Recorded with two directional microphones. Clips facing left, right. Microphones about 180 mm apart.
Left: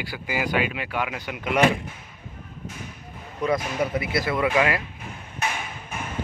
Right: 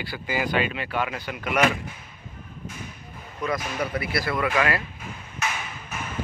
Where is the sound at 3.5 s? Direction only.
20° left (ahead or behind).